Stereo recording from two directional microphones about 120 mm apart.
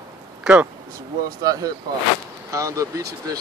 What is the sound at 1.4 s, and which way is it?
Speech, 30° right (ahead or behind).